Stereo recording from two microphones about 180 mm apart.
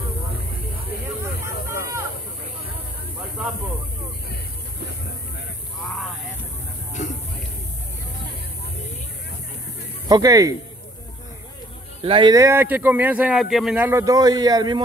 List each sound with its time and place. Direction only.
7.0 s a sound: 40° left (ahead or behind)
10.0 s speech: 20° right (ahead or behind)
12.0 s speech: 30° right (ahead or behind)